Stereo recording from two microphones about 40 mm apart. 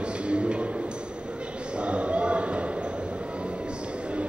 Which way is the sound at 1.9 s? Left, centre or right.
Right.